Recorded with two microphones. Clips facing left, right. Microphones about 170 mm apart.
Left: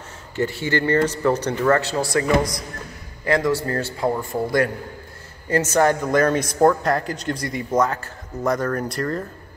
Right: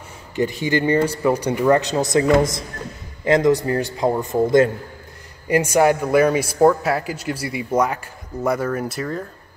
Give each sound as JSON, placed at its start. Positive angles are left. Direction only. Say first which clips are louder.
{"t": 0.4, "sound": "a man's voice", "louder": "right 2 dB", "side_deg": -15}